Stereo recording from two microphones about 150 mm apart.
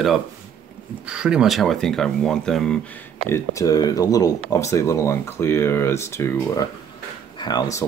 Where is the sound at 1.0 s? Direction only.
5° right (ahead or behind).